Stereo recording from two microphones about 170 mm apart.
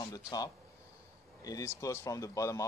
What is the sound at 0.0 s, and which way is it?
Speech, 20° left (ahead or behind).